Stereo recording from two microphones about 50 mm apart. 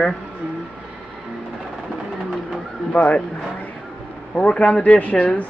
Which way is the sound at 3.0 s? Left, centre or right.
Centre.